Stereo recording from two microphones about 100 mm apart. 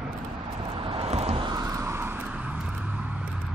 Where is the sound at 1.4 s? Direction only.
40° right (ahead or behind).